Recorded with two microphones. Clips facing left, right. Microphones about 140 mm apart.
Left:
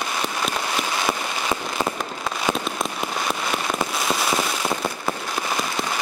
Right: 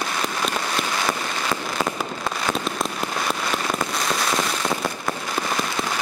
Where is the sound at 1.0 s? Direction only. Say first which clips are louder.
Left 1 dB; 10° left (ahead or behind).